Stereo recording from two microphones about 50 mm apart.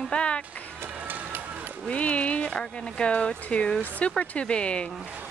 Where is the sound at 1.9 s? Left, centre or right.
Left.